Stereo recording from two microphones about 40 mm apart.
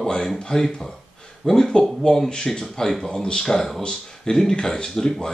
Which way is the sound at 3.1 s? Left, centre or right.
Left.